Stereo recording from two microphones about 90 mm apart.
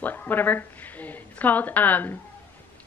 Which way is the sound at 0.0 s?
20° left (ahead or behind).